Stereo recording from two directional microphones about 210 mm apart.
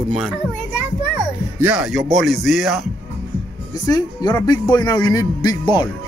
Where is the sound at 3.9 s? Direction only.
20° left (ahead or behind).